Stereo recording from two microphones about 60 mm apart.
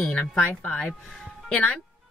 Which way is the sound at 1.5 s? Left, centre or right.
Left.